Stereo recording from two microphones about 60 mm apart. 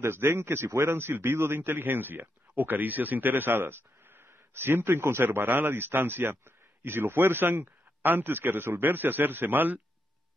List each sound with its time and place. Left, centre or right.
0.0 s a man's voice: right